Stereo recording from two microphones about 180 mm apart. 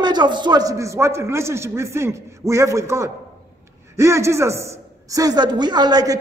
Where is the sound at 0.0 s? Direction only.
25° right (ahead or behind).